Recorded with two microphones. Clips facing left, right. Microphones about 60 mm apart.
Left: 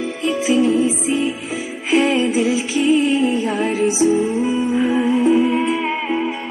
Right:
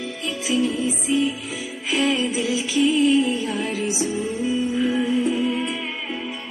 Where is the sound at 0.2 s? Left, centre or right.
Left.